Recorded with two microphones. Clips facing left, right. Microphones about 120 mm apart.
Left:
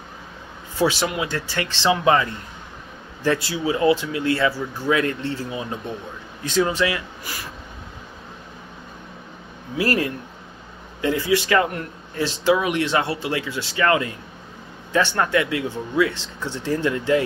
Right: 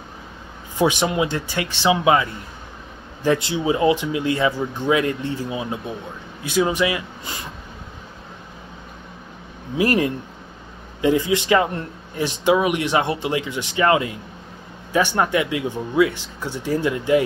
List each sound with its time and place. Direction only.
0.7 s speech: 20° right (ahead or behind)
3.3 s speech: 20° right (ahead or behind)
9.8 s speech: 20° right (ahead or behind)